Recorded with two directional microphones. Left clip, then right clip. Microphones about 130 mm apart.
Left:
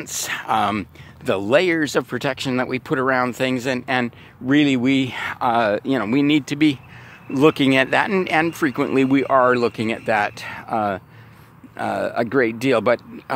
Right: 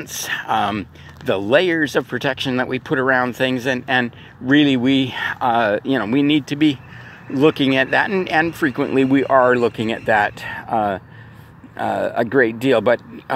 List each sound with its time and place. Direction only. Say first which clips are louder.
0.0 s speech: right 2 dB; 45° left (ahead or behind)